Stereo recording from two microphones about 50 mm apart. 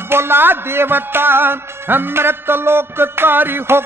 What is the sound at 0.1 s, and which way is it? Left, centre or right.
Music, right.